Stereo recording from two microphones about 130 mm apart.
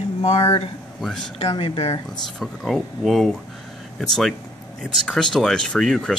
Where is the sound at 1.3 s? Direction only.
45° left (ahead or behind).